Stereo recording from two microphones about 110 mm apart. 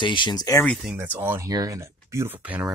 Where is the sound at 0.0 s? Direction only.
45° left (ahead or behind).